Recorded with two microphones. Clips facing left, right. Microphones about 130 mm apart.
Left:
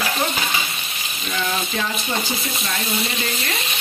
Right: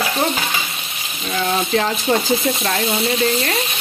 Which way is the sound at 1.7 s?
65° right (ahead or behind).